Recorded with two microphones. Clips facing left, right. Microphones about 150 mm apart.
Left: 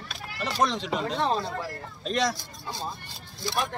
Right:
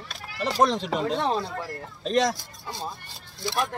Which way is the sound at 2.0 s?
45° right (ahead or behind).